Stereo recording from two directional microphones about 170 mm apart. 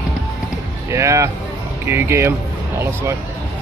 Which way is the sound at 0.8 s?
15° right (ahead or behind).